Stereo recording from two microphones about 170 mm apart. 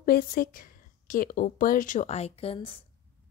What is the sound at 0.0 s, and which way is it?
A woman's voice, 60° left (ahead or behind).